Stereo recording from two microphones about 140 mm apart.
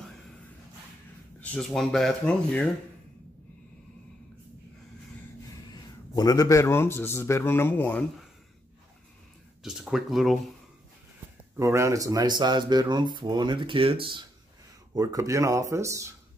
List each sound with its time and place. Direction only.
1.4 s speech: 5° left (ahead or behind)
6.1 s speech: 25° left (ahead or behind)
9.6 s a sound: 5° right (ahead or behind)
11.5 s speech: 20° right (ahead or behind); by 14.2 s 40° right (ahead or behind)
15.0 s speech: 25° right (ahead or behind)